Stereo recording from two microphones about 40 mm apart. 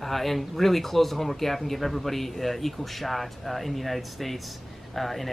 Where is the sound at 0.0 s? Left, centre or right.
Centre.